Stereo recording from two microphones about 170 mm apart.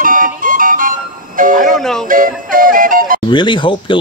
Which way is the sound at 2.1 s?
55° right (ahead or behind).